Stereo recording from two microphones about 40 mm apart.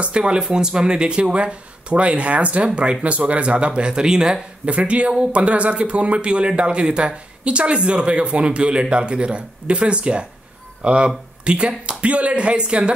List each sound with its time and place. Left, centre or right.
0.0 s speech: right
3.0 s speech: right; by 4.4 s centre
4.6 s speech: right